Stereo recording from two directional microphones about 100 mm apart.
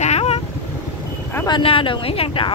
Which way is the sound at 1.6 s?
60° left (ahead or behind).